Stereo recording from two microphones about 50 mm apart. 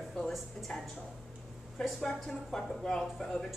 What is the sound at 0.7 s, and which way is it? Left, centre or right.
Speech, centre.